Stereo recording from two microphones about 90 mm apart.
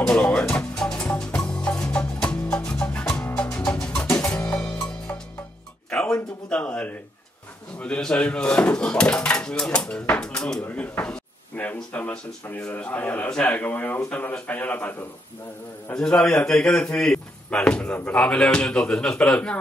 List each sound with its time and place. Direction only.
0.0 s music: 10° left (ahead or behind)
5.9 s a sound: 10° left (ahead or behind)
7.8 s speech: 10° left (ahead or behind)